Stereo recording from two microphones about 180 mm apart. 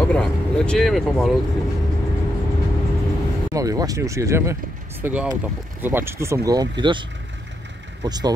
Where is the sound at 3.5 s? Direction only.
20° right (ahead or behind).